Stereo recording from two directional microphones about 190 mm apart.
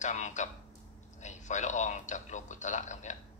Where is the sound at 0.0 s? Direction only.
40° left (ahead or behind).